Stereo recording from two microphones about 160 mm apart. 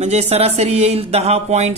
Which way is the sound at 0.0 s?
40° right (ahead or behind).